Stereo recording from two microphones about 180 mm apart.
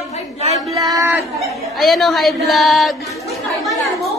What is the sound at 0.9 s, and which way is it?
Speech, 15° right (ahead or behind).